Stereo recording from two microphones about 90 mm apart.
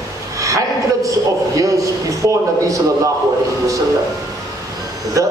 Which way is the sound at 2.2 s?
35° right (ahead or behind).